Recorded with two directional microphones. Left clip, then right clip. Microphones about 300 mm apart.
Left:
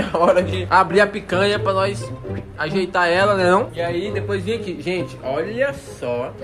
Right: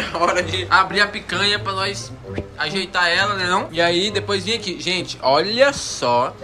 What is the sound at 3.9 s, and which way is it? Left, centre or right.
Speech, centre.